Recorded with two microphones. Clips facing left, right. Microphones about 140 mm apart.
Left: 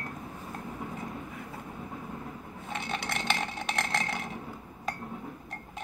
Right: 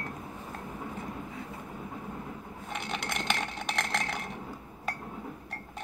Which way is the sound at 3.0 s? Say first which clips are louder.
Even; centre (ahead or behind).